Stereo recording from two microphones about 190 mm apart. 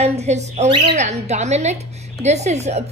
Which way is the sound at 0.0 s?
35° right (ahead or behind).